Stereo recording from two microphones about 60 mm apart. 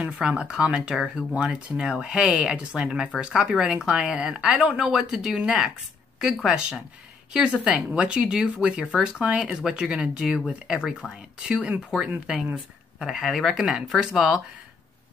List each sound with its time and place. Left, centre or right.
0.0 s speech: centre
13.0 s speech: centre